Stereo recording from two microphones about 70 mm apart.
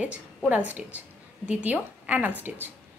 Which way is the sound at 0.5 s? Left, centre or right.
Right.